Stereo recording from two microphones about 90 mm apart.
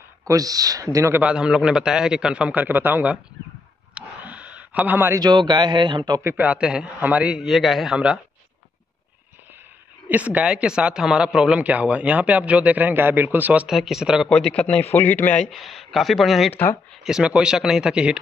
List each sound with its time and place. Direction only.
0.3 s speech: 40° right (ahead or behind)
1.2 s a man's voice: 10° right (ahead or behind)
3.9 s a sound: 15° right (ahead or behind)
5.2 s a man's voice: 55° right (ahead or behind)
6.2 s a man's voice: 20° right (ahead or behind)
7.4 s speech: centre (ahead or behind)
10.0 s a man's voice: 15° right (ahead or behind)
13.7 s speech: 5° right (ahead or behind)
14.3 s a man's voice: 15° left (ahead or behind)
15.5 s a man's voice: centre (ahead or behind)